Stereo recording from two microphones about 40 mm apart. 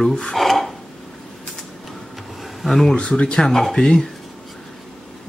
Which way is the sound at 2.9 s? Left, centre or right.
Left.